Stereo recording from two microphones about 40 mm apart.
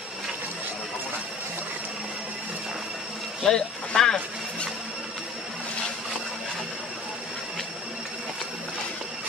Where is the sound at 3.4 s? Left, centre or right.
Centre.